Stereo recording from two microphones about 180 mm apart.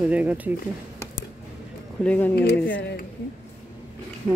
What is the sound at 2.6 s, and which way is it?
Speech, 90° left.